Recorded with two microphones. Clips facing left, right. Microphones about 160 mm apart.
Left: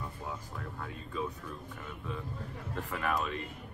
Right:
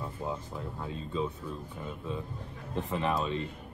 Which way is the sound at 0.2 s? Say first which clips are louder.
Right 5 dB; 25° right (ahead or behind).